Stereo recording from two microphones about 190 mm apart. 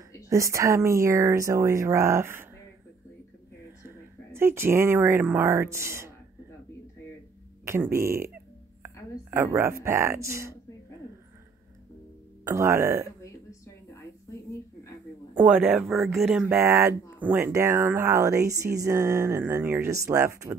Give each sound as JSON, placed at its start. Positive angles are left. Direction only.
{"t": 0.3, "sound": "speech", "side_deg": -15}
{"t": 3.8, "sound": "speech", "side_deg": -10}
{"t": 7.6, "sound": "speech", "side_deg": -15}
{"t": 12.4, "sound": "speech", "side_deg": -15}
{"t": 15.3, "sound": "speech", "side_deg": -10}